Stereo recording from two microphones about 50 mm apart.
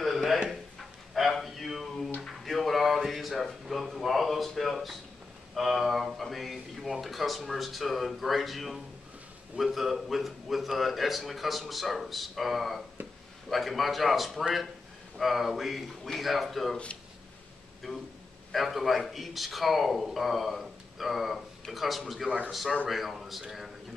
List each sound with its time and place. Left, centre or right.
0.0 s a sound: centre
9.6 s a man's voice: centre
16.7 s speech: left
17.8 s a man's voice: centre